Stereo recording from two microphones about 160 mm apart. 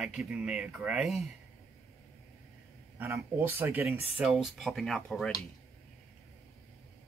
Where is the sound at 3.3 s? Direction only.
15° right (ahead or behind).